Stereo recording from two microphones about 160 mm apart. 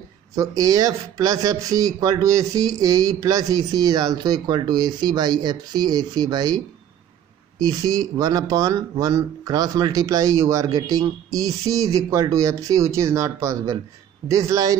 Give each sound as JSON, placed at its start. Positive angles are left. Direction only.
{"t": 0.4, "sound": "speech", "side_deg": -20}